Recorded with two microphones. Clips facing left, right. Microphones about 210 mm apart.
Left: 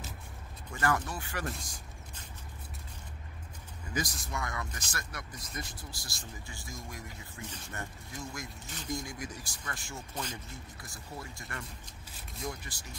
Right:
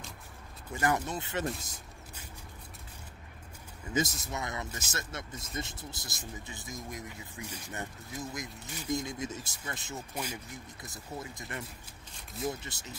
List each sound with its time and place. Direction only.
0.7 s speech: 20° right (ahead or behind)
3.9 s speech: 25° right (ahead or behind)
10.1 s speech: 10° right (ahead or behind)
10.8 s speech: 20° right (ahead or behind)
12.1 s speech: 5° left (ahead or behind)
12.4 s speech: 25° right (ahead or behind)